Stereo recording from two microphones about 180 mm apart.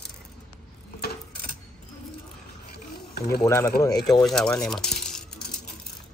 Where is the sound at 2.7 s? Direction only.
60° left (ahead or behind).